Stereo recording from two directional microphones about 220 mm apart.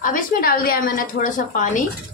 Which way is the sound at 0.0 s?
40° left (ahead or behind).